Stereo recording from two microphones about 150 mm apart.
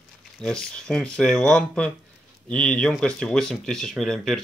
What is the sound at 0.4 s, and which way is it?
Speech, 5° left (ahead or behind).